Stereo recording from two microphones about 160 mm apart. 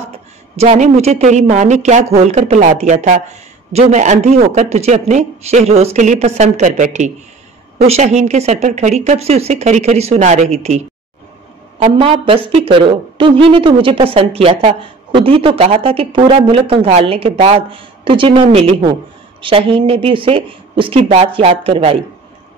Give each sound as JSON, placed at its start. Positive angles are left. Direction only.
{"t": 0.6, "sound": "speech", "side_deg": -45}
{"t": 11.8, "sound": "a woman's voice", "side_deg": -35}